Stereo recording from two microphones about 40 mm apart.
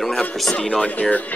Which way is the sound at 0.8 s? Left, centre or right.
Left.